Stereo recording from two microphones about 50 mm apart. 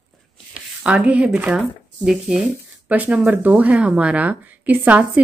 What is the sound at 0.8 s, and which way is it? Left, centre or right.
Speech, right.